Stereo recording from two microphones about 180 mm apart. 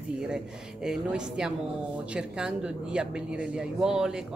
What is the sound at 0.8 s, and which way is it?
A woman's voice, 5° right (ahead or behind).